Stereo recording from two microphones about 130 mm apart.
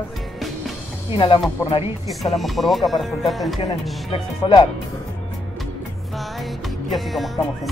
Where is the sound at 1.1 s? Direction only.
40° left (ahead or behind).